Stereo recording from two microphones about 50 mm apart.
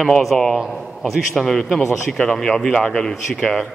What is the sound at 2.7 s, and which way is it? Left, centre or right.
Speech, centre.